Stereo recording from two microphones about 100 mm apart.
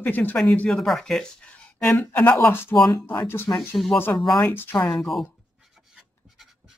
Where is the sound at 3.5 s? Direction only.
Centre (ahead or behind).